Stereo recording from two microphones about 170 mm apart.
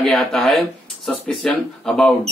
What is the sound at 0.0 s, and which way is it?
A man's voice, 5° left (ahead or behind).